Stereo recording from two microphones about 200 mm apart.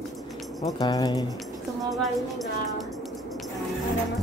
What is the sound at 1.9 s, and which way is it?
Music, centre (ahead or behind).